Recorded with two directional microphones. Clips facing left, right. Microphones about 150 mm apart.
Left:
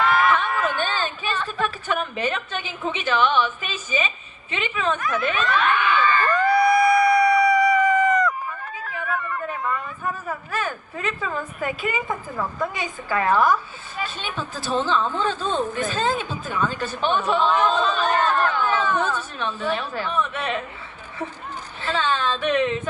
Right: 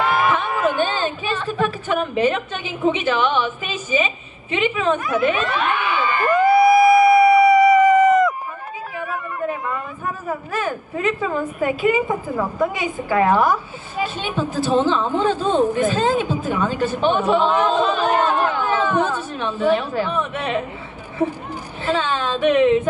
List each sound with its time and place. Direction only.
0.0 s a sound: 15° right (ahead or behind)
8.8 s a sound: 15° right (ahead or behind)
10.5 s a woman's voice: 15° right (ahead or behind)
12.1 s a woman's voice: 40° right (ahead or behind)
12.7 s a woman's voice: 15° right (ahead or behind)
21.8 s a woman's voice: 15° right (ahead or behind)